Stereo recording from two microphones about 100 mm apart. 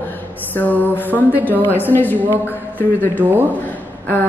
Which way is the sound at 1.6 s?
20° left (ahead or behind).